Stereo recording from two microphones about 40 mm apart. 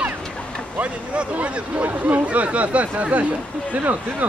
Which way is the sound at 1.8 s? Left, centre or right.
Right.